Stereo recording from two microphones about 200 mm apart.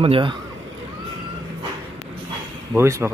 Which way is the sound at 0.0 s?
30° right (ahead or behind).